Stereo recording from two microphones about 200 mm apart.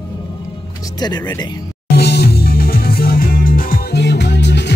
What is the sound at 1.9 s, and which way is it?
Music, 55° left (ahead or behind).